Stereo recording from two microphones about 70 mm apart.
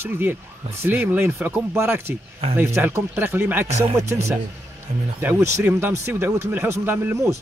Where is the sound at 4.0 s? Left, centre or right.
Right.